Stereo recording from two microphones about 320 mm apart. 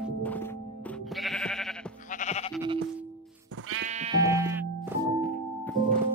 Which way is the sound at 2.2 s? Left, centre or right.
Left.